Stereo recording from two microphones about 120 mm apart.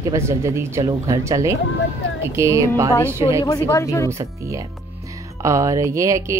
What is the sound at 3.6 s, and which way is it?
Speech, 25° left (ahead or behind).